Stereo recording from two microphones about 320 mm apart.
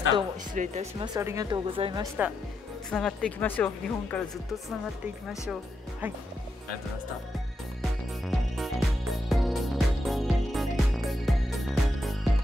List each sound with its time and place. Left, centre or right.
0.1 s speech: centre
2.9 s speech: centre
8.3 s music: centre